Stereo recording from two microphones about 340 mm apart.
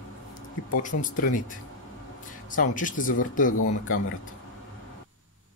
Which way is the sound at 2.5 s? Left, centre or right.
Left.